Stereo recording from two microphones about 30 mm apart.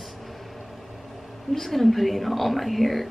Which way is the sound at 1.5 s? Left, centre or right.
Centre.